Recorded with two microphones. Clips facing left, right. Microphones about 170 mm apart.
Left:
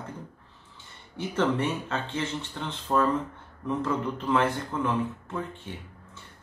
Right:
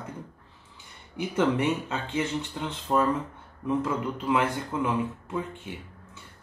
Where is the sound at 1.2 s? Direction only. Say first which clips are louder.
Right 1 dB; 10° right (ahead or behind).